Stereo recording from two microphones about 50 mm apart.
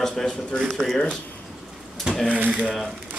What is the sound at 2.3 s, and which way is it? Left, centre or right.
Speech, right.